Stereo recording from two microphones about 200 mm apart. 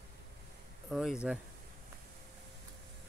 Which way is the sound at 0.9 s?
Centre (ahead or behind).